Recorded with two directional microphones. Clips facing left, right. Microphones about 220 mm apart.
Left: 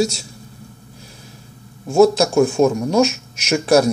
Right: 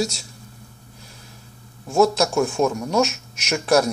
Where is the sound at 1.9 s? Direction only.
30° left (ahead or behind).